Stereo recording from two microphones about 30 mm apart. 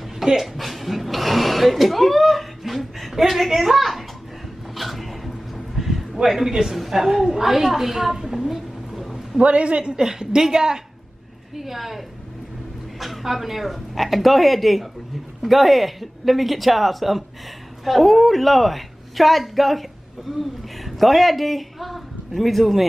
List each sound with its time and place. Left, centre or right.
0.2 s speech: centre
4.7 s a sound: centre
6.2 s a woman's voice: centre
8.5 s a sound: centre
9.4 s a woman's voice: right
10.0 s a woman's voice: centre
11.5 s a woman's voice: centre
13.2 s a woman's voice: centre